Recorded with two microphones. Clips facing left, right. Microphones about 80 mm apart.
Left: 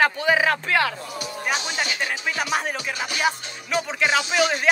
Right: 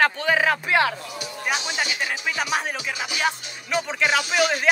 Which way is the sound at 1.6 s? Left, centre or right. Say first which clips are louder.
Even; centre.